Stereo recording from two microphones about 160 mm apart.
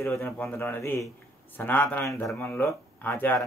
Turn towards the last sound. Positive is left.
turn(degrees=10)  # may be behind; listen again after turning